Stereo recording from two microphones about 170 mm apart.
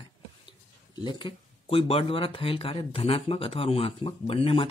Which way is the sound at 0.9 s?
30° left (ahead or behind).